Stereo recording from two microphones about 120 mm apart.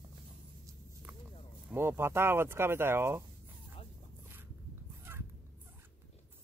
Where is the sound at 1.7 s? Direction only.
20° right (ahead or behind).